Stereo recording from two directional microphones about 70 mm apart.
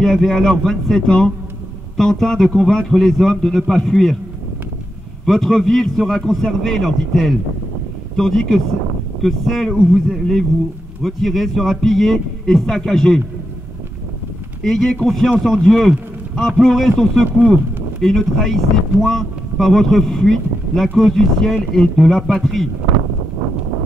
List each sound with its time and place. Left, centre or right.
0.0 s speech: centre
5.2 s speech: centre
14.6 s speech: centre